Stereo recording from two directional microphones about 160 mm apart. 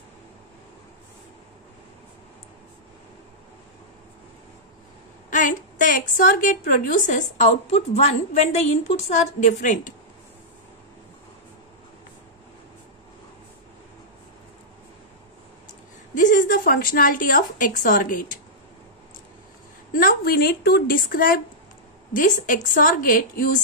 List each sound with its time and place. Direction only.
5.3 s a woman's voice: 55° left (ahead or behind)
16.2 s a woman's voice: 55° left (ahead or behind)
20.0 s a woman's voice: 70° left (ahead or behind)